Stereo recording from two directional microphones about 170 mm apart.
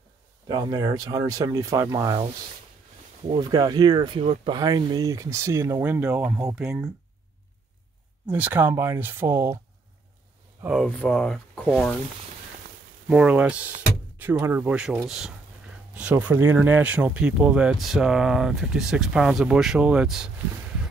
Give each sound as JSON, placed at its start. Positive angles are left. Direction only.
{"t": 0.5, "sound": "speech", "side_deg": -25}
{"t": 3.3, "sound": "speech", "side_deg": -25}
{"t": 8.3, "sound": "speech", "side_deg": -10}
{"t": 10.6, "sound": "speech", "side_deg": 0}
{"t": 13.1, "sound": "speech", "side_deg": -5}